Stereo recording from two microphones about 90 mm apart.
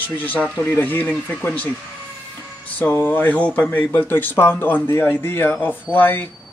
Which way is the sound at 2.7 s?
20° left (ahead or behind).